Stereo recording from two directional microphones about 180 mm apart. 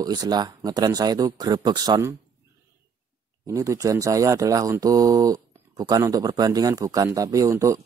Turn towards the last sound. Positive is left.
turn(degrees=-15)  # may be behind; listen again after turning